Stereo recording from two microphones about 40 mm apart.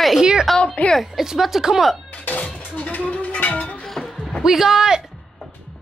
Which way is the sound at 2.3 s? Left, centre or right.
Left.